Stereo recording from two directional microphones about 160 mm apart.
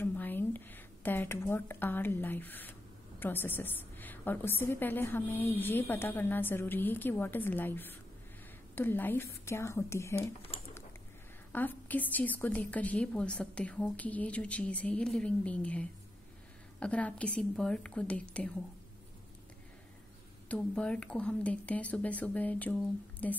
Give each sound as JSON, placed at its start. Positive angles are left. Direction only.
{"t": 0.0, "sound": "a woman's voice", "side_deg": 10}
{"t": 11.5, "sound": "a woman's voice", "side_deg": 10}
{"t": 20.4, "sound": "a woman's voice", "side_deg": 5}